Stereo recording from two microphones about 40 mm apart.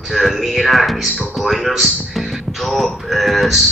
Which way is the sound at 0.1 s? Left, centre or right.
Centre.